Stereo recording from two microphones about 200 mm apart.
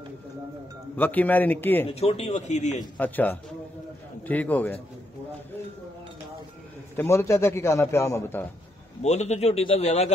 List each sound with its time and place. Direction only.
0.9 s a man's voice: 10° left (ahead or behind)
1.9 s a man's voice: 30° left (ahead or behind)
3.0 s a man's voice: 10° left (ahead or behind)
7.0 s a man's voice: 15° left (ahead or behind)
9.0 s a man's voice: 35° left (ahead or behind)